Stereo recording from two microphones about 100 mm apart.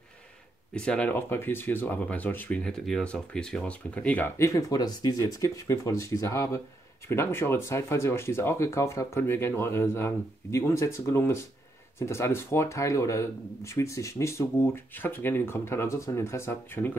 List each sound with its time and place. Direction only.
0.7 s speech: 10° left (ahead or behind)
4.4 s speech: 35° left (ahead or behind)